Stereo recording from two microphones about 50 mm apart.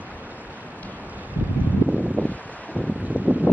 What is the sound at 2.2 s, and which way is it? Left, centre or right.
Wind, left.